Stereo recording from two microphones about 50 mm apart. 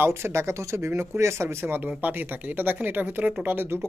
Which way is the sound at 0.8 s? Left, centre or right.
Right.